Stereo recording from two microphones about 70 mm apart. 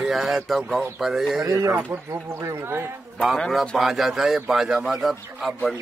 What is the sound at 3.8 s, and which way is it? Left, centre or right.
Speech, centre.